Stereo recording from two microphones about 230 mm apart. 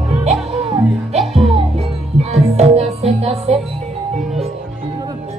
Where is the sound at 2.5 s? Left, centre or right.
Right.